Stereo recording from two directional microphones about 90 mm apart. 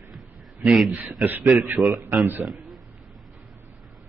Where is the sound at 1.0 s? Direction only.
20° right (ahead or behind).